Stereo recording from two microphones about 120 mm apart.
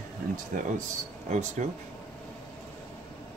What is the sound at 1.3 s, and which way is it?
Speech, 85° right.